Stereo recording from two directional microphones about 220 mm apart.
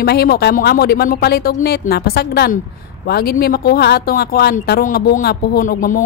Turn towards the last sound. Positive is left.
turn(degrees=40)  # may be behind; listen again after turning